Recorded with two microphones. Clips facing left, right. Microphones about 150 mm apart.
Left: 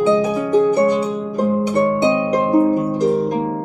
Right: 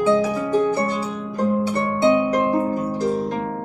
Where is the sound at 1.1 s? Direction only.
20° left (ahead or behind).